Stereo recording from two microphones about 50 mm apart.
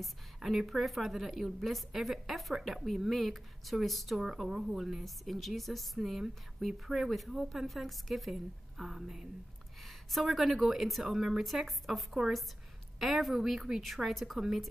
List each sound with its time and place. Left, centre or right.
0.0 s a woman's voice: centre
4.2 s a woman's voice: centre